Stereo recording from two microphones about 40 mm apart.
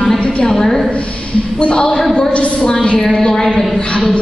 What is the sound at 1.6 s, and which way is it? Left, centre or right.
Speech, left.